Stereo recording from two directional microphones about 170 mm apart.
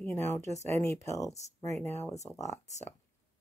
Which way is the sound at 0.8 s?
15° left (ahead or behind).